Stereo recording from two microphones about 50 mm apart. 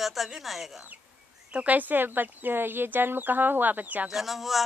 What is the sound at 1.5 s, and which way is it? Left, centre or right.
Speech, right.